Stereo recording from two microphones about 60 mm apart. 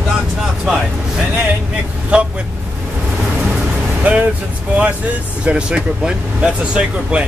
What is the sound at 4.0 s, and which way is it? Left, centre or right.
Speech, right.